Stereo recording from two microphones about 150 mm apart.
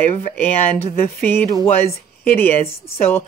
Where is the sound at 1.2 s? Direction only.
15° left (ahead or behind).